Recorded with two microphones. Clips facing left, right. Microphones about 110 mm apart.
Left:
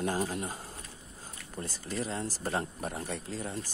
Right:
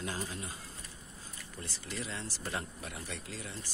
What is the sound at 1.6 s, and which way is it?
Speech, 40° left (ahead or behind).